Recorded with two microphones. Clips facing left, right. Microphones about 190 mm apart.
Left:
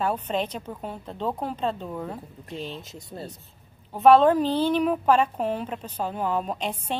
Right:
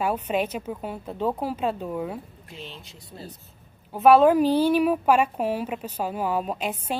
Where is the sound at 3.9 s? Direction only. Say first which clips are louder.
Right 1 dB; 5° right (ahead or behind).